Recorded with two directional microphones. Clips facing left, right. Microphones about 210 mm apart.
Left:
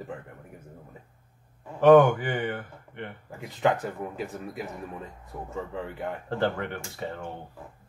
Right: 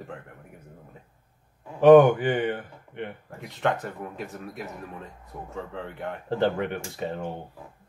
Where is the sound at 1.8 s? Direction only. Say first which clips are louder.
Right 3 dB; 20° right (ahead or behind).